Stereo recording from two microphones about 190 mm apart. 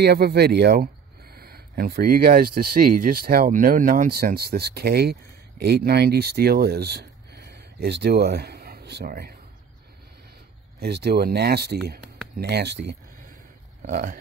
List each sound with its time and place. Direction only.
0.0 s speech: 55° right (ahead or behind)
10.8 s speech: 55° right (ahead or behind)
13.8 s speech: 50° right (ahead or behind)